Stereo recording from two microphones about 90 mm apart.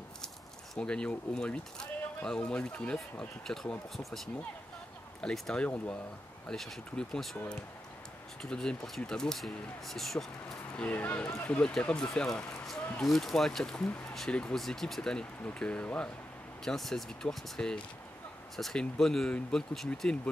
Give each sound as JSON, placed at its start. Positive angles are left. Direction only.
{"t": 0.7, "sound": "speech", "side_deg": 10}
{"t": 5.2, "sound": "speech", "side_deg": 10}
{"t": 8.4, "sound": "speech", "side_deg": 5}
{"t": 10.8, "sound": "speech", "side_deg": 15}
{"t": 16.6, "sound": "speech", "side_deg": 5}